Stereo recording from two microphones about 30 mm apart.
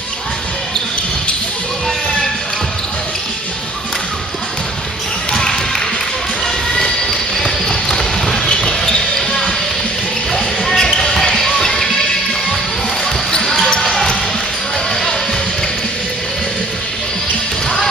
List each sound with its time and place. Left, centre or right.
5.3 s basketball bounce: centre
6.8 s a sound: centre
10.6 s basketball bounce: centre
11.3 s music: centre
13.3 s basketball bounce: centre